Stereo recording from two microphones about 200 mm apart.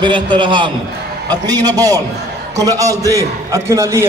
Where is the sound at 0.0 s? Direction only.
25° right (ahead or behind).